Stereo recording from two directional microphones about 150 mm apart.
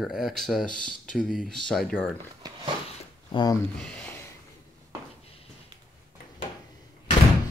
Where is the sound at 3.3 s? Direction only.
30° left (ahead or behind).